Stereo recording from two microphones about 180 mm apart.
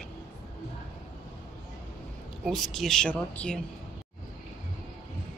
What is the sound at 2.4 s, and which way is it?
Speech, centre (ahead or behind).